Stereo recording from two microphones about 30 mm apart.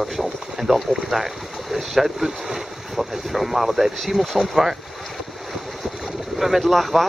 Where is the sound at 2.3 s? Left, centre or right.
Right.